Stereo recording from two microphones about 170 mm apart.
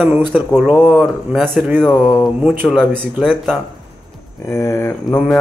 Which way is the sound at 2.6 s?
5° left (ahead or behind).